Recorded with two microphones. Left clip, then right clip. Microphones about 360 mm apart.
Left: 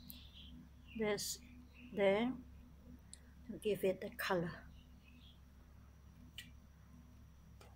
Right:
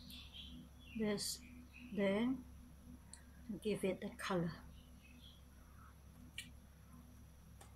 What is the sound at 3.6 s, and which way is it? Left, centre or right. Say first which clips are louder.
Speech: left 4 dB; centre.